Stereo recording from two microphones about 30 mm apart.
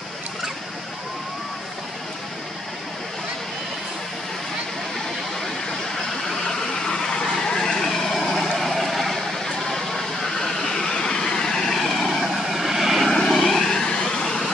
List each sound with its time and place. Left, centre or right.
6.4 s vehicle: centre
12.4 s vehicle: centre
13.3 s vehicle: centre
13.6 s vehicle: centre
14.2 s vehicle: centre